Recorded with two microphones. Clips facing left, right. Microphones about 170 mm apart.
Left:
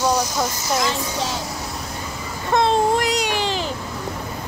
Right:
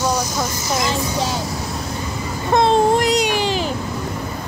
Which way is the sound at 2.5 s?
20° right (ahead or behind).